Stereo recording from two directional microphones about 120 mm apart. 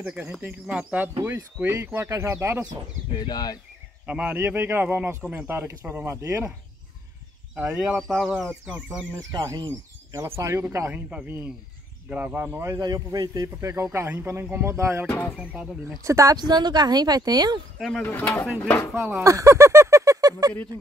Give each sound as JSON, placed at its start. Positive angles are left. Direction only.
{"t": 0.0, "sound": "a man's voice", "side_deg": -10}
{"t": 3.2, "sound": "speech", "side_deg": 35}
{"t": 4.0, "sound": "a man's voice", "side_deg": -15}
{"t": 7.5, "sound": "a man's voice", "side_deg": -5}
{"t": 9.3, "sound": "speech", "side_deg": -35}
{"t": 10.9, "sound": "a man's voice", "side_deg": -10}
{"t": 12.7, "sound": "speech", "side_deg": -35}
{"t": 15.0, "sound": "speech", "side_deg": 15}
{"t": 15.3, "sound": "a man's voice", "side_deg": -10}
{"t": 16.0, "sound": "speech", "side_deg": -25}
{"t": 17.7, "sound": "speech", "side_deg": 0}
{"t": 18.0, "sound": "speech", "side_deg": 15}
{"t": 18.9, "sound": "a man's voice", "side_deg": -15}
{"t": 19.2, "sound": "a sound", "side_deg": -25}